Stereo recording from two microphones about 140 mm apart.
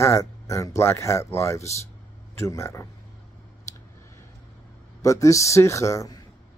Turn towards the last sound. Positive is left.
turn(degrees=20)  # may be behind; listen again after turning